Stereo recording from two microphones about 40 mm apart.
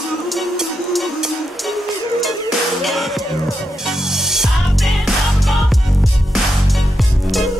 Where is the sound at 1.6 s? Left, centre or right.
Centre.